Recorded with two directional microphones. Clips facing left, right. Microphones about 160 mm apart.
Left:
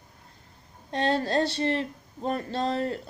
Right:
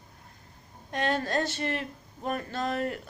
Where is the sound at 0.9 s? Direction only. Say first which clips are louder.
Left 3 dB; 30° left (ahead or behind).